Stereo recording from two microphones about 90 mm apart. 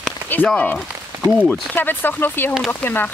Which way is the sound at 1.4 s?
20° left (ahead or behind).